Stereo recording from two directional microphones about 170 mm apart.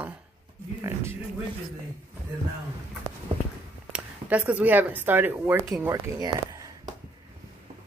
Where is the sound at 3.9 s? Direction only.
10° right (ahead or behind).